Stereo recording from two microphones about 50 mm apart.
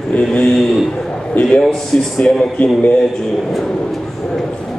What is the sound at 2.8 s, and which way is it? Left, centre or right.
Speech, left.